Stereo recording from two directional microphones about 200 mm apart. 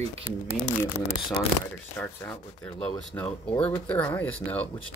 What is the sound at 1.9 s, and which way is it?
Speech, 5° left (ahead or behind).